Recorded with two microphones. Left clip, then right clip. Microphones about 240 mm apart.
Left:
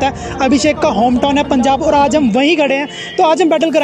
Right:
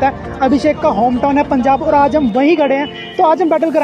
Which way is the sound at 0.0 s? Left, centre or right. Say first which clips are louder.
Right 1 dB; left.